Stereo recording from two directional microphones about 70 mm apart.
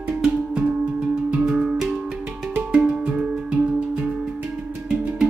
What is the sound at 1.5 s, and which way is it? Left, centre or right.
Music, centre.